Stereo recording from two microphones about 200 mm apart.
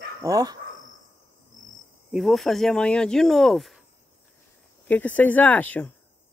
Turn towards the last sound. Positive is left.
turn(degrees=10)  # may be behind; listen again after turning